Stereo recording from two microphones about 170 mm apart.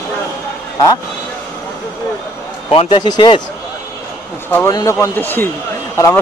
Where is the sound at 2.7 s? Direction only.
30° left (ahead or behind).